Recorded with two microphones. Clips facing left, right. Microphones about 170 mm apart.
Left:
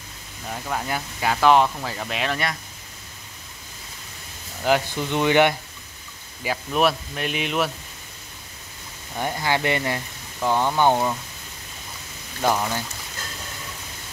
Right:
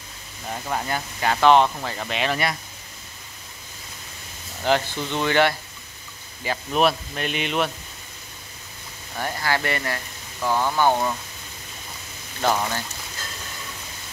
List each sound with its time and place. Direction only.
0.8 s speech: 5° left (ahead or behind)
4.6 s speech: 10° left (ahead or behind)
6.4 s speech: 5° left (ahead or behind)
9.1 s speech: 20° left (ahead or behind)
12.4 s speech: 5° left (ahead or behind)